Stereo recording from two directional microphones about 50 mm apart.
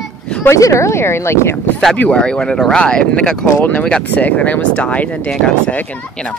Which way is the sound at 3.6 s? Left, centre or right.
Left.